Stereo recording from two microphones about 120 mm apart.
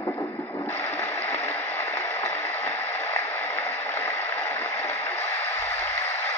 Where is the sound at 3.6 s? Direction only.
20° left (ahead or behind).